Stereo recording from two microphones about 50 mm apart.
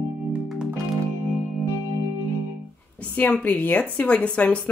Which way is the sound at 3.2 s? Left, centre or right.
Left.